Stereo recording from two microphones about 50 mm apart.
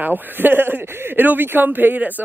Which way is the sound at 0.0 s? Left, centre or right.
Right.